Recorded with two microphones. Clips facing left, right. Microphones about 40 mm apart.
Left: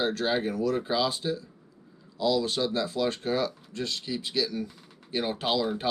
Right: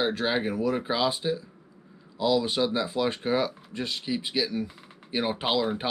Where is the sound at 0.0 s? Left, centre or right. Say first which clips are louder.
Right 1 dB; centre.